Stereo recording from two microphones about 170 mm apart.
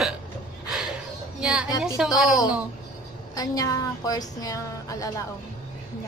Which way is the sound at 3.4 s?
20° left (ahead or behind).